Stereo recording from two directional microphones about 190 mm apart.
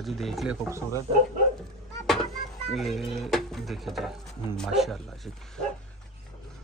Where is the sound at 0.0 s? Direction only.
Centre (ahead or behind).